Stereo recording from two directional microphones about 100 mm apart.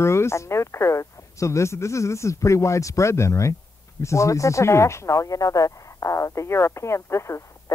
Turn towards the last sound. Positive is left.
turn(degrees=30)  # may be behind; listen again after turning